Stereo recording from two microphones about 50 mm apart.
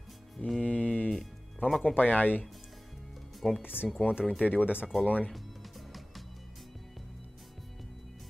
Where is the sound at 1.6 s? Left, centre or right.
Left.